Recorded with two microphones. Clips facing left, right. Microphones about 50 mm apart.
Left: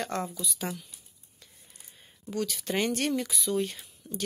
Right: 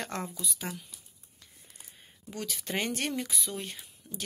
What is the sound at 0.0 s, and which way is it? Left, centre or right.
Speech, centre.